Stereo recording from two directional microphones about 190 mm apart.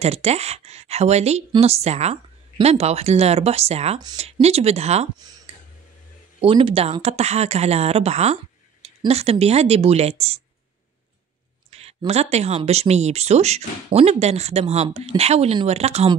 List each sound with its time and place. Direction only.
0.0 s speech: 35° right (ahead or behind)
6.4 s speech: 30° right (ahead or behind)
11.7 s speech: 30° right (ahead or behind)